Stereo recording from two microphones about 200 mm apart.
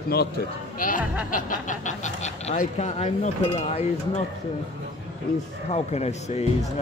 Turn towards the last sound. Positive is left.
turn(degrees=35)  # may be behind; listen again after turning